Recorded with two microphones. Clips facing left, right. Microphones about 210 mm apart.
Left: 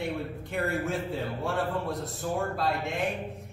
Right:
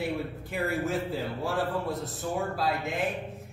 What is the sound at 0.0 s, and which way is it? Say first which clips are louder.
Speech: right 1 dB; centre (ahead or behind).